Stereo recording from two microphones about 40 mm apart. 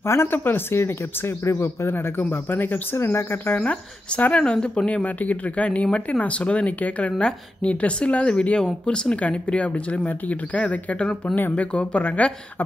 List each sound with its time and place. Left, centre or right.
0.0 s speech: left
3.0 s speech: left
4.3 s speech: left
4.8 s speech: left
11.0 s speech: centre
11.5 s speech: left